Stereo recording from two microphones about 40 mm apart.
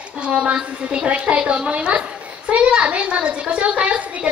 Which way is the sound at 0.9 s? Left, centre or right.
Right.